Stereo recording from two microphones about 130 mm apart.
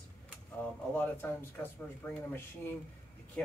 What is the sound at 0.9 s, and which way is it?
Speech, 15° left (ahead or behind).